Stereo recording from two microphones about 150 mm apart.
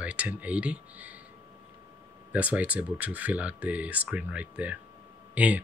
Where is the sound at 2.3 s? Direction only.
10° right (ahead or behind).